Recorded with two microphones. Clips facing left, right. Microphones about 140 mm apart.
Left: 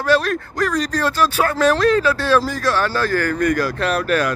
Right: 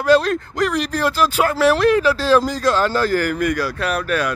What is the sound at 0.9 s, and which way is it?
Speech, 10° right (ahead or behind).